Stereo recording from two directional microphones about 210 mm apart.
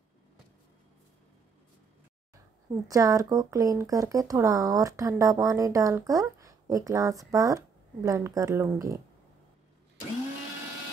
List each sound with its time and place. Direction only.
2.9 s speech: 15° right (ahead or behind)